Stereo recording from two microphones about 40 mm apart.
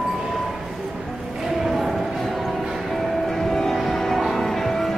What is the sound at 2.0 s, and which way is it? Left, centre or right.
Music, centre.